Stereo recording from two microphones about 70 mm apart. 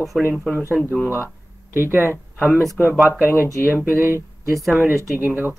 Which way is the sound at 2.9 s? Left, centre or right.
Centre.